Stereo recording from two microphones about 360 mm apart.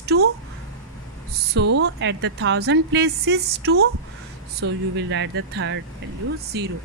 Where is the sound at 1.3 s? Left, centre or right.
Right.